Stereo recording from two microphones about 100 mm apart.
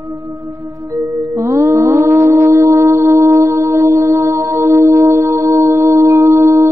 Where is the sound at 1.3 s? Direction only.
30° right (ahead or behind).